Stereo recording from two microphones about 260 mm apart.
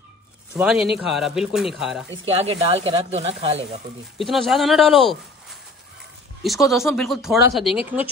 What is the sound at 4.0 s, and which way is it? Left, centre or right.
Speech, centre.